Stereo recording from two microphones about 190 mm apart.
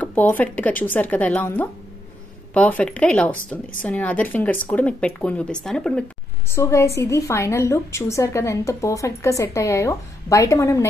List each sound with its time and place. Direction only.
0.0 s a woman's voice: 10° left (ahead or behind)